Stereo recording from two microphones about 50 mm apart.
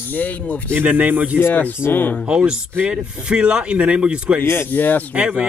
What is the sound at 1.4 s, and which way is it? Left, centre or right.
Speech, left.